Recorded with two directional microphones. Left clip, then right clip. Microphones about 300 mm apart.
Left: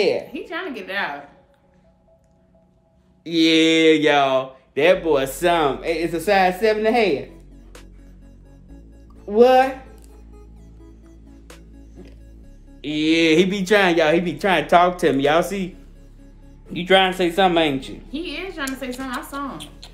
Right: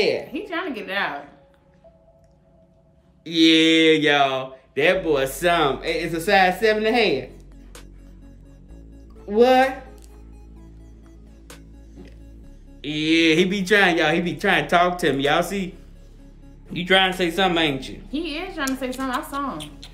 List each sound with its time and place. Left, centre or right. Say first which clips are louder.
0.0 s speech: left 2 dB; centre
0.3 s a woman's voice: right 1 dB; centre
3.3 s speech: even; centre
9.3 s speech: left 2 dB; centre
11.1 s music: right 2 dB; centre
12.8 s speech: left 1 dB; centre
16.7 s a man's voice: left 2 dB; centre
18.1 s a woman's voice: right 1 dB; centre